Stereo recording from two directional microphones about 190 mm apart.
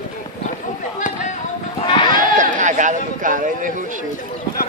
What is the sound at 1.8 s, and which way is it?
Sheep, 25° left (ahead or behind).